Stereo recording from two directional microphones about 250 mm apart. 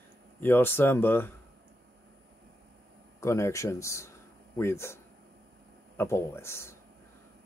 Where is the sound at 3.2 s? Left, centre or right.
Centre.